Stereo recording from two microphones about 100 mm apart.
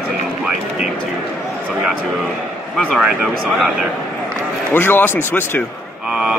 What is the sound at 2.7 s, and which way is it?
Speech, centre (ahead or behind).